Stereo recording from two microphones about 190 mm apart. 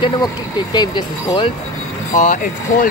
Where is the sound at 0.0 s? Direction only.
20° left (ahead or behind).